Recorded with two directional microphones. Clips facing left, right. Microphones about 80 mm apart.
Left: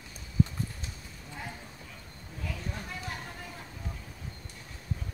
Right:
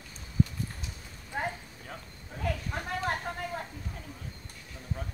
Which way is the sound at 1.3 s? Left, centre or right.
Right.